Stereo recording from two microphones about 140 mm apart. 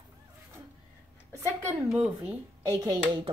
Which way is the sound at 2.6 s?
25° right (ahead or behind).